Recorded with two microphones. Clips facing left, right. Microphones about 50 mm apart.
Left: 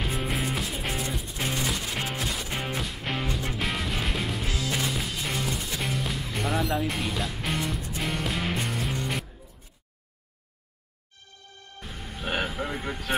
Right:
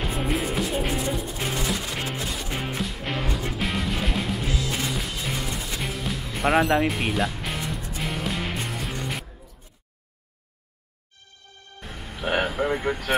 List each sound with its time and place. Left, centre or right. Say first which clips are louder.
0.0 s music: right 3 dB; centre
6.4 s speech: right 8 dB; right
7.2 s music: right 3 dB; centre
11.8 s music: right 4 dB; centre